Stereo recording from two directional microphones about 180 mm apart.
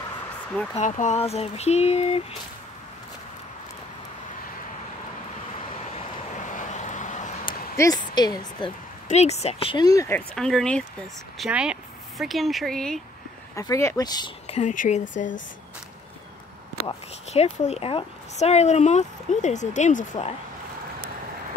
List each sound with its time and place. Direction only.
0.7 s a woman's voice: 45° left (ahead or behind)
5.9 s vehicle: 45° left (ahead or behind)
7.7 s a woman's voice: 20° left (ahead or behind)
9.1 s a woman's voice: 35° left (ahead or behind); by 10.2 s 15° left (ahead or behind)
10.3 s speech: 5° left (ahead or behind)
13.6 s speech: 15° left (ahead or behind)
14.5 s speech: 40° left (ahead or behind)
16.8 s a woman's voice: 35° left (ahead or behind)